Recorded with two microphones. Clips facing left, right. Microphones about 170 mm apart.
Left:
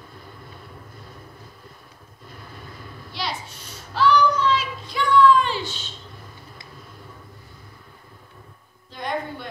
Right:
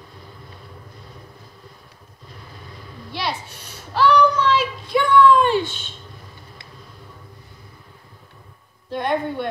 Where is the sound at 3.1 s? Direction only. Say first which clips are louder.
Right 4 dB; 60° right (ahead or behind).